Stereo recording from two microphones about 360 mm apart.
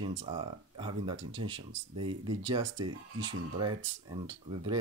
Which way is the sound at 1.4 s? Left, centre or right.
Right.